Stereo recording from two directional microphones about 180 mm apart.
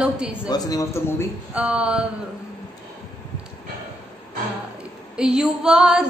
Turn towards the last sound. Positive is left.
turn(degrees=-5)  # may be behind; listen again after turning